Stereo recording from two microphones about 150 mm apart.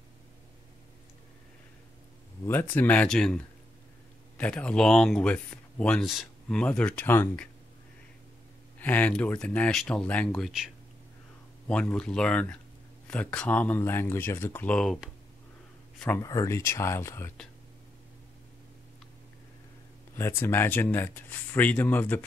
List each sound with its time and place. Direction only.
2.4 s speech: 15° left (ahead or behind)
8.7 s speech: 10° left (ahead or behind)
16.2 s speech: 20° left (ahead or behind)
20.2 s speech: 15° left (ahead or behind)